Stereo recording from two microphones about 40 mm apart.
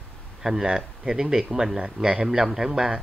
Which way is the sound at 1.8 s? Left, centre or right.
Right.